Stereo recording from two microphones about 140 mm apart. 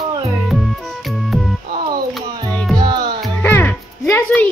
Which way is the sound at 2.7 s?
30° right (ahead or behind).